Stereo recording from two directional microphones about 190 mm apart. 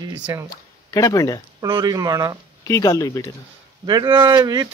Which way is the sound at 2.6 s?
15° left (ahead or behind).